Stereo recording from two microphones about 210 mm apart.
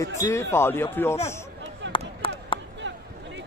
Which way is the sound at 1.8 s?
60° right (ahead or behind).